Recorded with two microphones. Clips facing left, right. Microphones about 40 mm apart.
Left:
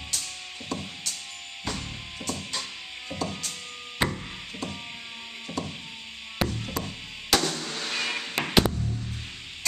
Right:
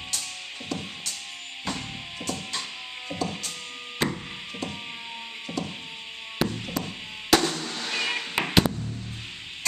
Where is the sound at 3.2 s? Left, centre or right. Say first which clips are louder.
Right 1 dB; centre.